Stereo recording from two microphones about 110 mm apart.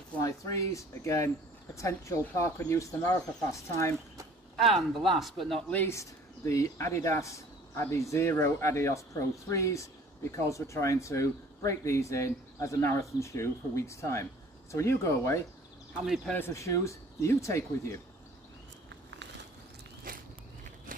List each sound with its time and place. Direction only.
0.2 s speech: 30° left (ahead or behind)
4.6 s speech: centre (ahead or behind)
5.7 s speech: 15° left (ahead or behind)
5.9 s speech: 25° left (ahead or behind)